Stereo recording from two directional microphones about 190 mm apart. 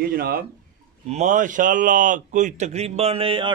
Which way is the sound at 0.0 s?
50° right (ahead or behind).